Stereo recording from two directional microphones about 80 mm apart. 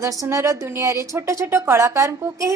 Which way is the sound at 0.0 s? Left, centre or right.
Right.